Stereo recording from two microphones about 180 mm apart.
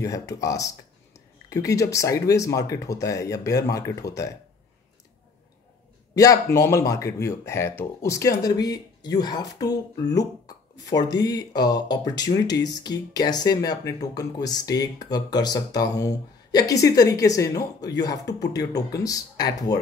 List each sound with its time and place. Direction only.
0.0 s speech: 20° left (ahead or behind)
6.1 s speech: 20° left (ahead or behind)
10.4 s a sound: 20° left (ahead or behind)
11.2 s speech: 20° left (ahead or behind)